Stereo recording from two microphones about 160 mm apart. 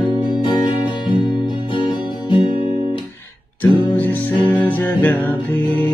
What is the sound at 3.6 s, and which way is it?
Music, 10° left (ahead or behind).